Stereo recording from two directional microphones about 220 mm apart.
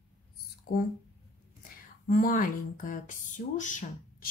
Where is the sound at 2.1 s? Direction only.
40° left (ahead or behind).